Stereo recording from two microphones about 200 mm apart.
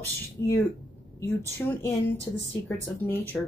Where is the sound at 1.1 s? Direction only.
15° left (ahead or behind).